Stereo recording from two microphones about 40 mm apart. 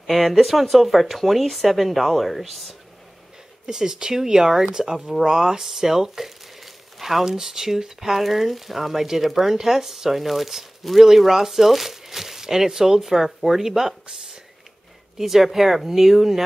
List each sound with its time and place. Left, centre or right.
0.0 s speech: centre
3.6 s speech: centre